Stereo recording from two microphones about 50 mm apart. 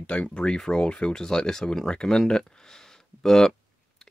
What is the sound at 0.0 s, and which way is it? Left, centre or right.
Speech, left.